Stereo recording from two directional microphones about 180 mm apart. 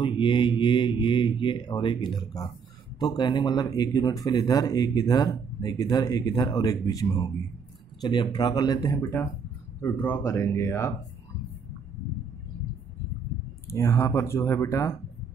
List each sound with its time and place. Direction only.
0.0 s speech: 25° left (ahead or behind)
13.7 s speech: 15° left (ahead or behind)